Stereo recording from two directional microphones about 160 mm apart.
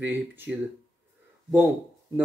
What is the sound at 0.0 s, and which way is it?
Speech, 10° right (ahead or behind).